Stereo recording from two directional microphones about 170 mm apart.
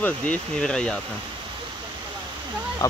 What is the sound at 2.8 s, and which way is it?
Speech, 20° left (ahead or behind).